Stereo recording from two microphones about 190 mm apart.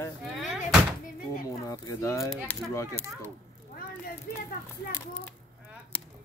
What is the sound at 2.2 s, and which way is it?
Speech, centre (ahead or behind).